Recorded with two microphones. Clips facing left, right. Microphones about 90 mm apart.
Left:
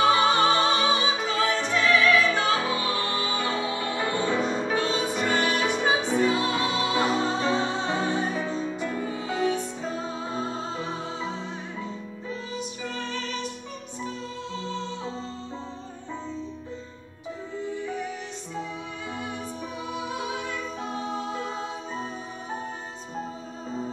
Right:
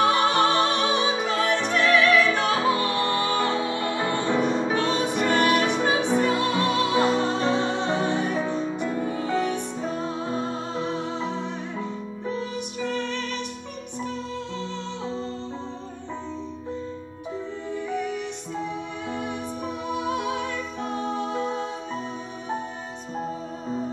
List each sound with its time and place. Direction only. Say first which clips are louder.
0.1 s music: even; 55° right (ahead or behind)
12.5 s music: right 5 dB; 60° right (ahead or behind)
19.9 s music: right 5 dB; 60° right (ahead or behind)